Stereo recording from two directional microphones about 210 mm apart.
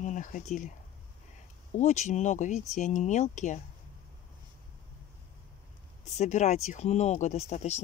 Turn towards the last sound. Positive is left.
turn(degrees=30)  # may be behind; listen again after turning